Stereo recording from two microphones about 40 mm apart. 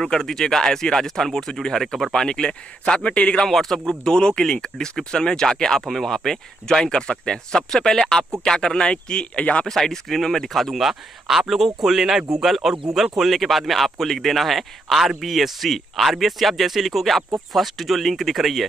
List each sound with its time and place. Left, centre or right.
0.0 s speech: centre
2.2 s speech: left
3.4 s speech: centre
8.9 s speech: left
9.7 s speech: centre